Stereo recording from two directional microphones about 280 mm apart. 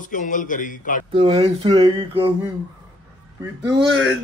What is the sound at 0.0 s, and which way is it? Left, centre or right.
A man's voice, left.